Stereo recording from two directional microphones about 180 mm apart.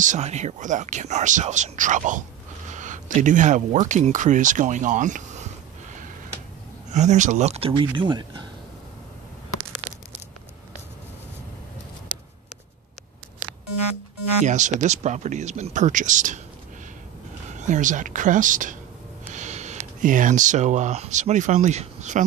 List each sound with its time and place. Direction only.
0.0 s speech: 40° right (ahead or behind)
6.9 s speech: 40° right (ahead or behind); by 8.5 s 25° right (ahead or behind)
14.4 s speech: 40° right (ahead or behind)
17.5 s speech: 45° right (ahead or behind)
19.3 s a sound: 40° right (ahead or behind)
20.0 s speech: 45° right (ahead or behind)